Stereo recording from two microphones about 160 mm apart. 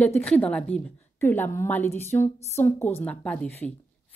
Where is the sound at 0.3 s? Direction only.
5° left (ahead or behind).